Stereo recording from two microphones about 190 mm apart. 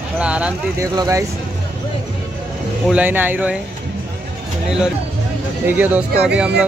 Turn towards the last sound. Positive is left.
turn(degrees=-5)  # may be behind; listen again after turning